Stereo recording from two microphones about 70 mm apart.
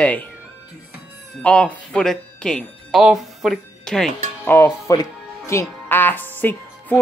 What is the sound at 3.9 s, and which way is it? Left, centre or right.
Speech, centre.